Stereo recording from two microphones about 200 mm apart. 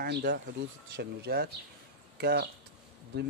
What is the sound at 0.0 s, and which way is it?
Speech, 55° right (ahead or behind).